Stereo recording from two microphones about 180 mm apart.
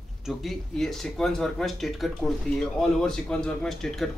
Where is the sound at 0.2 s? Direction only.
Centre (ahead or behind).